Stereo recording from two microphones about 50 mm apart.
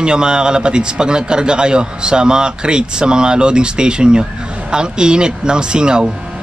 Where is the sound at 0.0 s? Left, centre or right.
Centre.